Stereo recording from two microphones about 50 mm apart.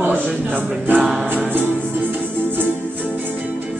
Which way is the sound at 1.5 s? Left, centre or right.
Right.